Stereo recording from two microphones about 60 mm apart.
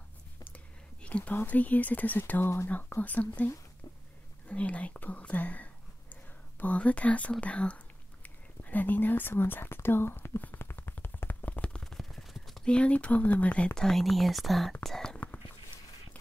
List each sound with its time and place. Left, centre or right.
1.0 s whispering: left
1.3 s speech: left
2.4 s speech: left
2.7 s speech: left
4.5 s speech: left
6.6 s whispering: left
11.8 s a sound: centre
12.6 s speech: centre
13.7 s speech: centre